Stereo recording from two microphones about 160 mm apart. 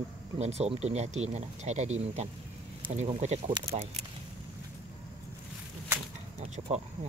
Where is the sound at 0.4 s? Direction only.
45° right (ahead or behind).